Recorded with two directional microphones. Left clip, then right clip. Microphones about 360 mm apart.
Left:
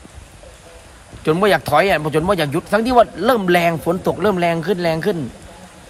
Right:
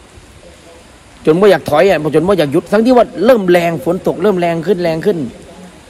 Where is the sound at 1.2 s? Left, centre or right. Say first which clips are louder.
Right 6 dB; centre.